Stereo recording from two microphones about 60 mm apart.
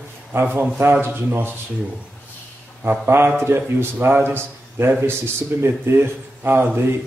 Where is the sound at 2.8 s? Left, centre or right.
Right.